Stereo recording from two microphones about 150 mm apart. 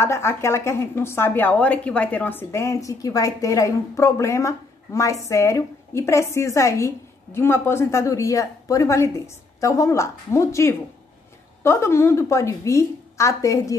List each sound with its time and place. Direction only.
0.0 s a woman's voice: 20° left (ahead or behind)